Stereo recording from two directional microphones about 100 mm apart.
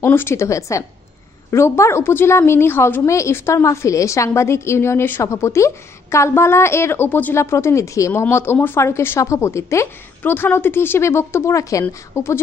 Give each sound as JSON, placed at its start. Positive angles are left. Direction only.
{"t": 0.0, "sound": "a woman's voice", "side_deg": 25}